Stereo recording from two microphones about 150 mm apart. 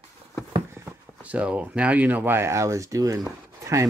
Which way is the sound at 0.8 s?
10° right (ahead or behind).